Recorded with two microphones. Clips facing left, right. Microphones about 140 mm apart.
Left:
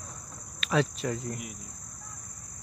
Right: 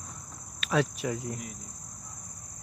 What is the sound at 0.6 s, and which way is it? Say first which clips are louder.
Cricket: even; centre (ahead or behind).